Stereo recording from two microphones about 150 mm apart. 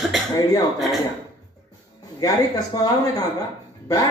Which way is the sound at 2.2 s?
25° left (ahead or behind).